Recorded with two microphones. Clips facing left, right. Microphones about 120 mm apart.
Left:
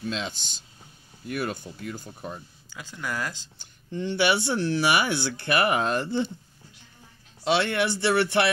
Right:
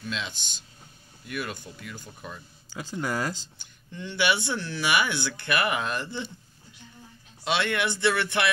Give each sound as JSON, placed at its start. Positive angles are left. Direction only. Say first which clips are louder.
{"t": 0.1, "sound": "speech", "louder": "left 3 dB", "side_deg": 35}
{"t": 2.7, "sound": "speech", "louder": "right 4 dB", "side_deg": -40}
{"t": 3.9, "sound": "speech", "louder": "left 3 dB", "side_deg": 30}
{"t": 7.4, "sound": "speech", "louder": "left 3 dB", "side_deg": 30}